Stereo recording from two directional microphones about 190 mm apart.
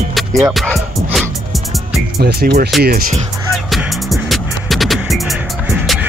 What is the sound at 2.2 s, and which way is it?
Speech, 55° right (ahead or behind).